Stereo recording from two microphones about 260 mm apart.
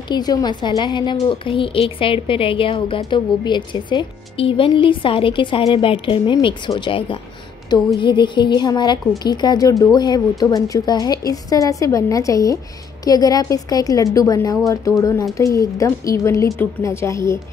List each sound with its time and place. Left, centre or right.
0.1 s a woman's voice: centre